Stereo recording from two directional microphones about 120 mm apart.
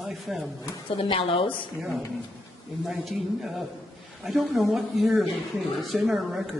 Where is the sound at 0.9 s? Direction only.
50° left (ahead or behind).